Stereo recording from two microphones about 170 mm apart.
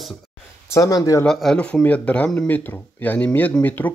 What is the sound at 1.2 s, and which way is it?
Speech, 5° left (ahead or behind).